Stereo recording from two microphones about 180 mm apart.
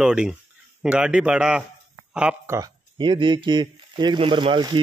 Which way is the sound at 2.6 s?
25° right (ahead or behind).